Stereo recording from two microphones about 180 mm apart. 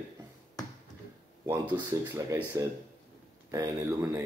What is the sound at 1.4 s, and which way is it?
Speech, 15° right (ahead or behind).